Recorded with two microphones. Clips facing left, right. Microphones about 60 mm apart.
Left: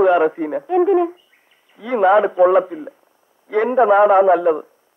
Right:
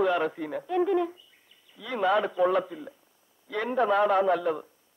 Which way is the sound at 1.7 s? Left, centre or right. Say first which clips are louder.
Left 11 dB; left.